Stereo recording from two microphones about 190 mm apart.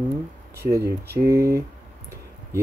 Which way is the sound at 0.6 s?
15° right (ahead or behind).